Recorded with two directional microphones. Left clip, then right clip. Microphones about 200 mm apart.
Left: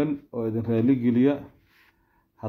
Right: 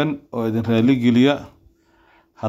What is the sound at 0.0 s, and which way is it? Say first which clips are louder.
Speech: right 5 dB; 20° right (ahead or behind).